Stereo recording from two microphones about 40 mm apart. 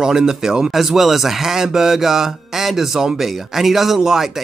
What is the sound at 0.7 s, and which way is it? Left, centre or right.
Speech, centre.